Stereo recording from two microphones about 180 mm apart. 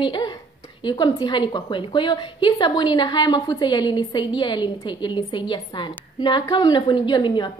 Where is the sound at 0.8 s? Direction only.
25° left (ahead or behind).